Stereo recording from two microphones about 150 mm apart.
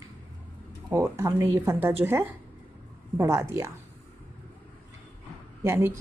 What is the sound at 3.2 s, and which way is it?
Speech, 20° right (ahead or behind).